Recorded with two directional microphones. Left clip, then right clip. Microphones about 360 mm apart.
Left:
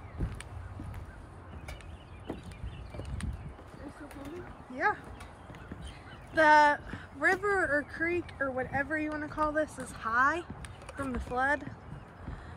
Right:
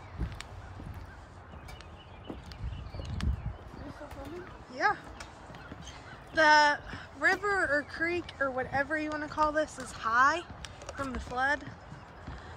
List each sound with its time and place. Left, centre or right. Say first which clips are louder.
4.7 s speech: right 1 dB; centre
6.3 s speech: left 1 dB; centre